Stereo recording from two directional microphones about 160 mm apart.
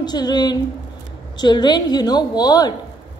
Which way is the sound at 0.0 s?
25° left (ahead or behind).